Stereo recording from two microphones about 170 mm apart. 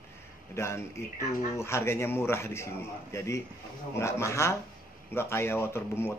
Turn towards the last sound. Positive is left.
turn(degrees=15)  # may be behind; listen again after turning